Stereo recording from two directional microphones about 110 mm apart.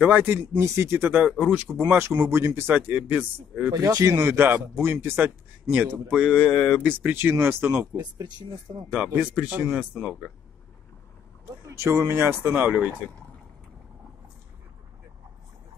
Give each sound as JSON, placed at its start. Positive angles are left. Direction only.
{"t": 0.0, "sound": "speech", "side_deg": -15}
{"t": 3.7, "sound": "speech", "side_deg": -30}
{"t": 6.5, "sound": "speech", "side_deg": 5}
{"t": 6.8, "sound": "speech", "side_deg": -15}
{"t": 7.9, "sound": "speech", "side_deg": -35}
{"t": 8.9, "sound": "speech", "side_deg": -10}
{"t": 11.6, "sound": "speech", "side_deg": -25}